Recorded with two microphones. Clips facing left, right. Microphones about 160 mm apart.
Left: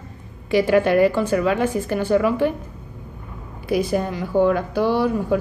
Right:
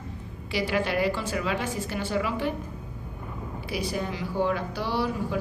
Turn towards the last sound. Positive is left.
turn(degrees=50)  # may be behind; listen again after turning